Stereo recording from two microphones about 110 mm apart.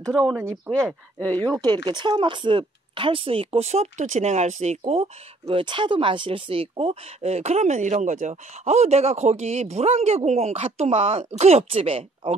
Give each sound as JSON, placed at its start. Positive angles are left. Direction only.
{"t": 0.7, "sound": "speech", "side_deg": -20}
{"t": 1.2, "sound": "speech", "side_deg": 15}
{"t": 1.6, "sound": "speech", "side_deg": -40}